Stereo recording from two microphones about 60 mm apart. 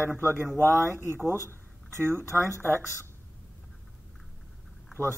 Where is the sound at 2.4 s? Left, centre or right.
Right.